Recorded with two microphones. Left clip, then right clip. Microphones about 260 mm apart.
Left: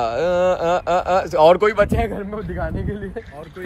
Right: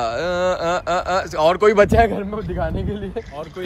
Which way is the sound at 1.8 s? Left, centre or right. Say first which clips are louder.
Right 5 dB; right.